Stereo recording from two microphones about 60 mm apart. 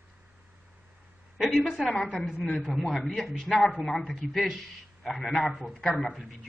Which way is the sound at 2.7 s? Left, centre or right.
Centre.